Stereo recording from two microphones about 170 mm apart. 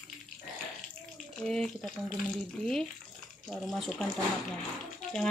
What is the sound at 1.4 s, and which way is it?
Speech, 5° left (ahead or behind).